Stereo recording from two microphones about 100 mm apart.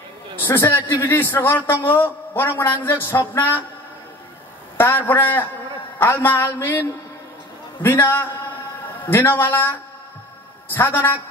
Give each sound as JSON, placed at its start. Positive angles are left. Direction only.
{"t": 0.4, "sound": "a man's voice", "side_deg": 20}
{"t": 4.7, "sound": "a man's voice", "side_deg": 20}